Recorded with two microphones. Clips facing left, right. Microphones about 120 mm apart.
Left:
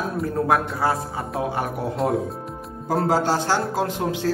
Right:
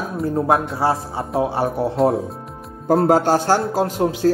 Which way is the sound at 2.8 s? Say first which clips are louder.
Right 6 dB; 50° right (ahead or behind).